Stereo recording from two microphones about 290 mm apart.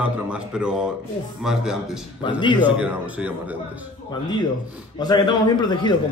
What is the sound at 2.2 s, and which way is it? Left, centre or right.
Speech, centre.